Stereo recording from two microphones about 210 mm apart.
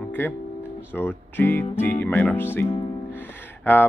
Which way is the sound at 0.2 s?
10° left (ahead or behind).